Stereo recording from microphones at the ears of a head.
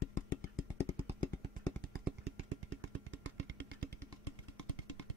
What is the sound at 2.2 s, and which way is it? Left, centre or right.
Vehicle, right.